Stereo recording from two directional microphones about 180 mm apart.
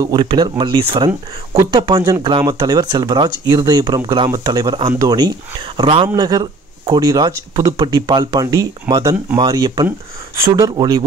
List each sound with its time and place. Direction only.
0.0 s speech: 25° right (ahead or behind)